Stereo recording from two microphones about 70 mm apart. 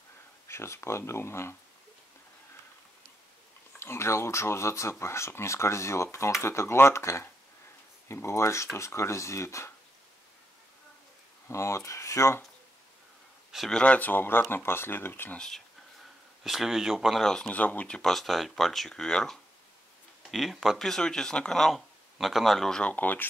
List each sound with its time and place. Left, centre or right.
0.5 s speech: left
3.8 s speech: left
11.4 s speech: left
13.7 s speech: centre; by 15.3 s left
15.3 s speech: centre
16.0 s speech: centre
17.5 s speech: left
18.1 s speech: centre
20.2 s speech: centre
22.8 s speech: left